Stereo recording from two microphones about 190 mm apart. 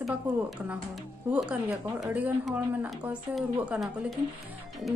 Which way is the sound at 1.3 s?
5° right (ahead or behind).